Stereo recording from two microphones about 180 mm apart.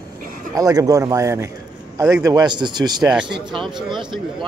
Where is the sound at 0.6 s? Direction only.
20° right (ahead or behind).